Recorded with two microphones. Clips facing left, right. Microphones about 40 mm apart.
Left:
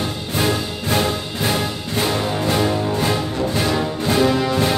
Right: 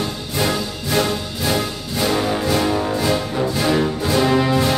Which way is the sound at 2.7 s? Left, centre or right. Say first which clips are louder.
Right 1 dB; centre.